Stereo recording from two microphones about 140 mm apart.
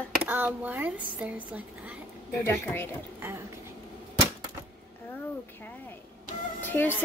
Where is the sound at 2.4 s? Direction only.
15° left (ahead or behind).